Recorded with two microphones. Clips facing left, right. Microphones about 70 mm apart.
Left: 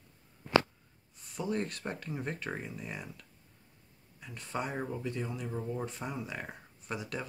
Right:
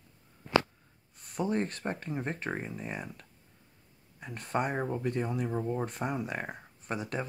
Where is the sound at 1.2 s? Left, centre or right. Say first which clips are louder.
Right 6 dB; right.